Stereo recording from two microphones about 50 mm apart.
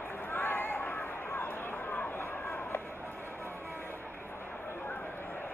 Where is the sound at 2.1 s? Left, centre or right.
Left.